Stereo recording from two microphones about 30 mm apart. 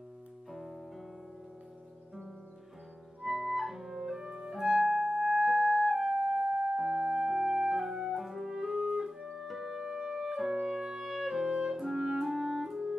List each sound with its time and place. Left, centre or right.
0.5 s music: centre
3.2 s music: centre
10.1 s clarinet: centre
11.1 s music: centre
11.8 s clarinet: centre